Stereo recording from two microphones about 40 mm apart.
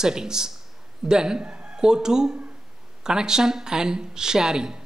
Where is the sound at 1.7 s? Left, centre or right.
Centre.